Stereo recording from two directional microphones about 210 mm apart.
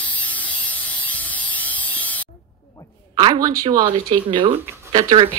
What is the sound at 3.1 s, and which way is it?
Speech, 20° right (ahead or behind).